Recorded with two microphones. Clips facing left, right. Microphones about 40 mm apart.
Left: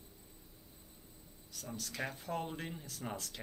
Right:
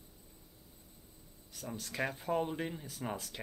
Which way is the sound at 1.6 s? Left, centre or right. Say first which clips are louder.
Right 4 dB; centre.